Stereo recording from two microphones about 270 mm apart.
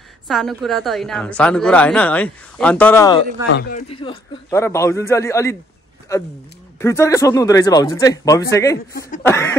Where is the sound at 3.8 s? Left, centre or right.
Centre.